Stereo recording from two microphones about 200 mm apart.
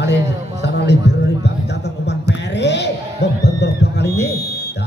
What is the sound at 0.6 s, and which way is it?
Music, 60° left (ahead or behind).